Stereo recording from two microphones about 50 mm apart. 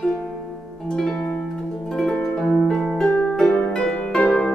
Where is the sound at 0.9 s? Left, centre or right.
Centre.